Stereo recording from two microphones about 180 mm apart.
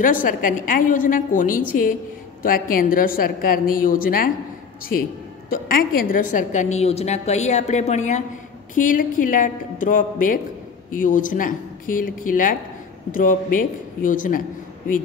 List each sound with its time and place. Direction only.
0.0 s a woman's voice: 50° left (ahead or behind)
5.5 s a woman's voice: 55° left (ahead or behind)